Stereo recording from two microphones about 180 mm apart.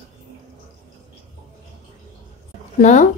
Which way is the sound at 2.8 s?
45° left (ahead or behind).